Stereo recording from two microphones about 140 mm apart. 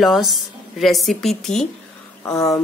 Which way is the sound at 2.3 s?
25° left (ahead or behind).